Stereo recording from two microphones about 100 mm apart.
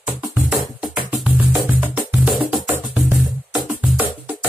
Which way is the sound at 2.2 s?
5° right (ahead or behind).